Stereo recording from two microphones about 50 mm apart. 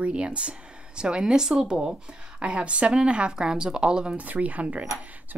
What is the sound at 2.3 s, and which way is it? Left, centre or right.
Speech, right.